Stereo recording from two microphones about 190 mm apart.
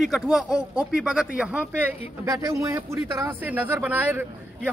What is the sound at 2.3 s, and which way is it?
Speech, 15° right (ahead or behind).